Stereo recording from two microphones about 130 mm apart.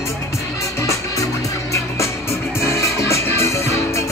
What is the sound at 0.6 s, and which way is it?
Music, 25° left (ahead or behind).